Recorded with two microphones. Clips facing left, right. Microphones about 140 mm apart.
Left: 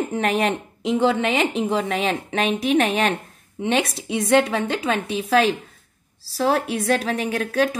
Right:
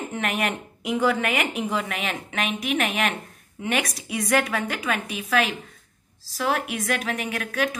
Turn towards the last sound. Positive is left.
turn(degrees=30)  # may be behind; listen again after turning